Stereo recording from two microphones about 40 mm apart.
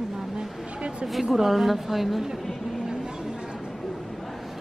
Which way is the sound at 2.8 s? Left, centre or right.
Centre.